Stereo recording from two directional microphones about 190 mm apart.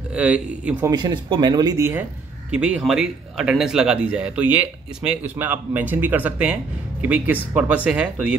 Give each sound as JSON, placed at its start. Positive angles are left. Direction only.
{"t": 0.1, "sound": "speech", "side_deg": -5}
{"t": 0.8, "sound": "speech", "side_deg": -20}